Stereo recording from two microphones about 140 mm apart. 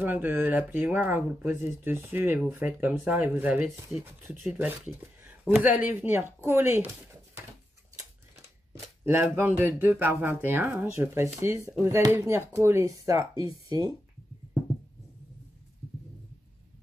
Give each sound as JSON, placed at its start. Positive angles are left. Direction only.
{"t": 0.0, "sound": "speech", "side_deg": -15}
{"t": 8.7, "sound": "speech", "side_deg": -15}